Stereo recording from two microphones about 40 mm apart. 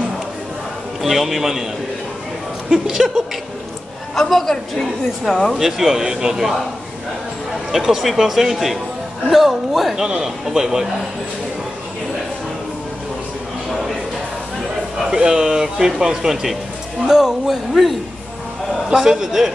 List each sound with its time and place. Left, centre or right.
1.0 s speech: centre
2.7 s speech: centre
4.1 s a woman's voice: centre
5.5 s speech: centre
7.7 s speech: centre
10.0 s speech: centre
15.0 s speech: right
18.9 s speech: centre